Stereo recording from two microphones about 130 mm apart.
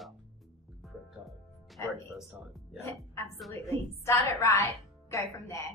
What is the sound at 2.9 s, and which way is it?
A woman's voice, 20° left (ahead or behind).